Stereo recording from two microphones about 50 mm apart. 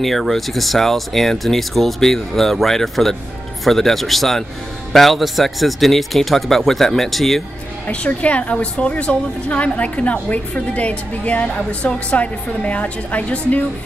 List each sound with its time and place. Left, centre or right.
0.0 s speech: centre
7.8 s a woman's voice: left